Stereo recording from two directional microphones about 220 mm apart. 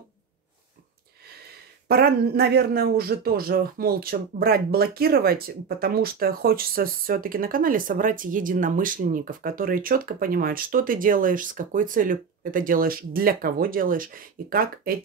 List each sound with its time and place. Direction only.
1.9 s a man's voice: 45° right (ahead or behind)